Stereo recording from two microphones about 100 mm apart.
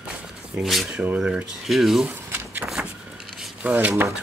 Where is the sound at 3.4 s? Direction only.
15° right (ahead or behind).